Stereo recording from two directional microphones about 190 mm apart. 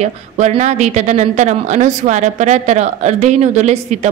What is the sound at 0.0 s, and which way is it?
A woman's voice, 35° right (ahead or behind).